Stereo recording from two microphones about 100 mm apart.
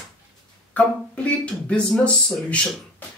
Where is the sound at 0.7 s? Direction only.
10° left (ahead or behind).